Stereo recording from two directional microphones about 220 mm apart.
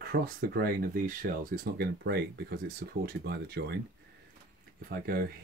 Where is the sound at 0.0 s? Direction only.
45° right (ahead or behind).